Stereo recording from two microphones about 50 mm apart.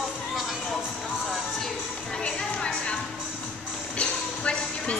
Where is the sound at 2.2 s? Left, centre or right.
Centre.